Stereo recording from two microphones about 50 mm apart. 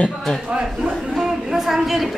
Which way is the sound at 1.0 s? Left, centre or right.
Centre.